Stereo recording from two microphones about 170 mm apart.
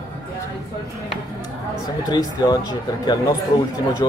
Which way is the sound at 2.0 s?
25° left (ahead or behind).